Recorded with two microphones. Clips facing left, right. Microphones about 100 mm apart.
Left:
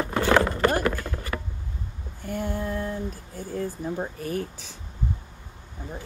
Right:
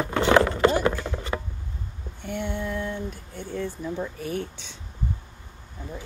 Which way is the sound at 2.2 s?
40° left (ahead or behind).